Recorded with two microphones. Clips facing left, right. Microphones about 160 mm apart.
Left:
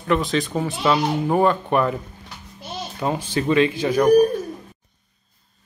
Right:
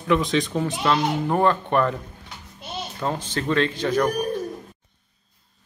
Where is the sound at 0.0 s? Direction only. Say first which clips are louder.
Even; centre (ahead or behind).